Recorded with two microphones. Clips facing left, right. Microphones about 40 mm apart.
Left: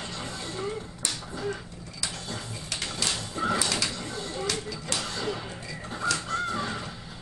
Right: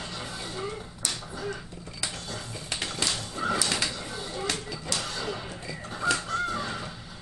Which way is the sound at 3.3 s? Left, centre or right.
Centre.